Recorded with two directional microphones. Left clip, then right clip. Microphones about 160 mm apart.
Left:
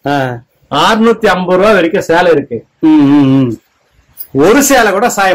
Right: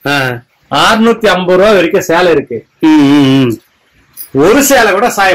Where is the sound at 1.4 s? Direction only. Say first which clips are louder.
Right 1 dB; 15° right (ahead or behind).